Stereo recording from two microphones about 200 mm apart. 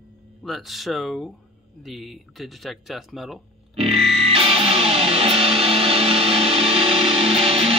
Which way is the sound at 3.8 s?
30° right (ahead or behind).